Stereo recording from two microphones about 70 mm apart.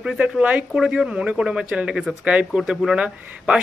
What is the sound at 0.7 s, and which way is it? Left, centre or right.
A man's voice, centre.